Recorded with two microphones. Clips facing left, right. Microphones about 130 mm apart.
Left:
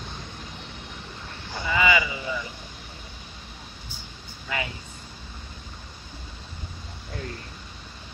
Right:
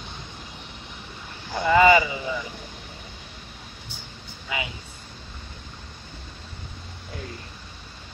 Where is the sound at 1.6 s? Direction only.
45° right (ahead or behind).